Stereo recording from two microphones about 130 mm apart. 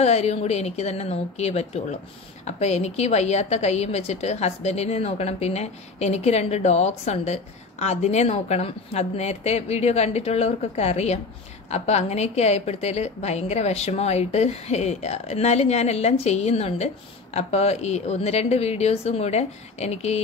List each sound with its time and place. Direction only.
0.0 s a woman's voice: 55° left (ahead or behind)